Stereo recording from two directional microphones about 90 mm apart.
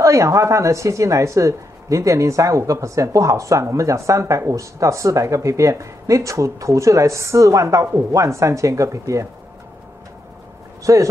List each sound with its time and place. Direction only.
0.0 s a woman's voice: 35° right (ahead or behind)
10.8 s a man's voice: 35° right (ahead or behind)